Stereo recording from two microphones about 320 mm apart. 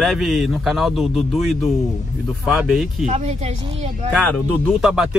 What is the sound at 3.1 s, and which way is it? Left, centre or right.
Speech, right.